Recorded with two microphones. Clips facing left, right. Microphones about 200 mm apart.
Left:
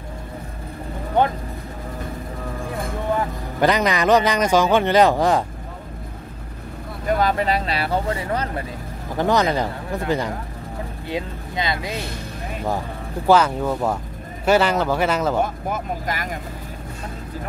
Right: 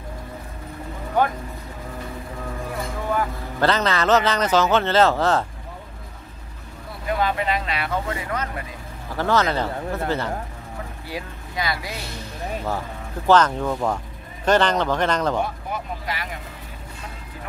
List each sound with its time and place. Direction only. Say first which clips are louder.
3.1 s a man's voice: left 1 dB; 20° left (ahead or behind)
7.1 s speech: left 3 dB; 40° left (ahead or behind)
9.1 s speech: left 2 dB; 15° left (ahead or behind)
13.3 s speech: left 1 dB; 10° left (ahead or behind)
15.4 s speech: left 4 dB; 45° left (ahead or behind)